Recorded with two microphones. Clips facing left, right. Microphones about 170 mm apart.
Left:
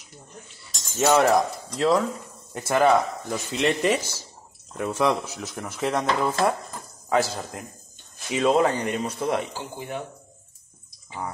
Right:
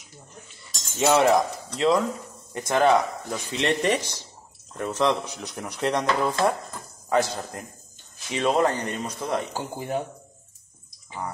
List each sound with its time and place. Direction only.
1.0 s speech: centre (ahead or behind)
9.5 s speech: 40° right (ahead or behind)